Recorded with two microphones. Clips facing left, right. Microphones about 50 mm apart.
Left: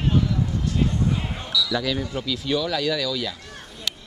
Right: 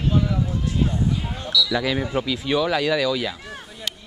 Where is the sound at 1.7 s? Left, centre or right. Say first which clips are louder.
Right 2 dB; centre.